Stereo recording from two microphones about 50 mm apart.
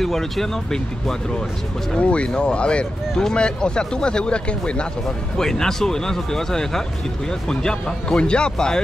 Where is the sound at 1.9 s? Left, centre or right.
Left.